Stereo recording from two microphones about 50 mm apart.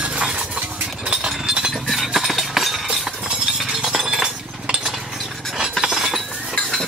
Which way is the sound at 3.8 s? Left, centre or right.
Centre.